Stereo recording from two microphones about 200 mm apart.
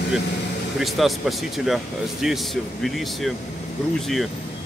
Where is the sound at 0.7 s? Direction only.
Centre (ahead or behind).